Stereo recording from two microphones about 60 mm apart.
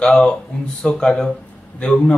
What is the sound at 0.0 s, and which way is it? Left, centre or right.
Speech, centre.